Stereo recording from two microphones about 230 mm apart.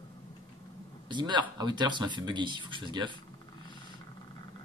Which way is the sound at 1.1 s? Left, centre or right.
Centre.